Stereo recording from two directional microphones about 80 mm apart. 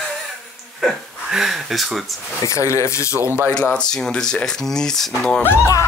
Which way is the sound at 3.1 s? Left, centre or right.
Right.